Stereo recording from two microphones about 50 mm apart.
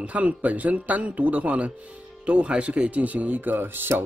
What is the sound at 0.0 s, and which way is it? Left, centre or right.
Speech, right.